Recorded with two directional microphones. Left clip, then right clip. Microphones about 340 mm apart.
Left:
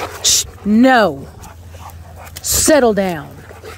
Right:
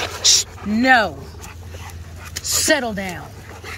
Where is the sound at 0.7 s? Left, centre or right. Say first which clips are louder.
Left 4 dB; centre.